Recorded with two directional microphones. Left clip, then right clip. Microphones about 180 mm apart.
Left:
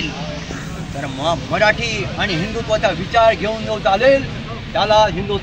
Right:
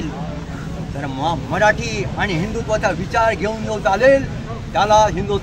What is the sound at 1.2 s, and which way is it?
Speech, 20° right (ahead or behind).